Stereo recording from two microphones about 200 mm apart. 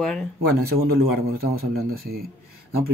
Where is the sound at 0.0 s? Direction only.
5° left (ahead or behind).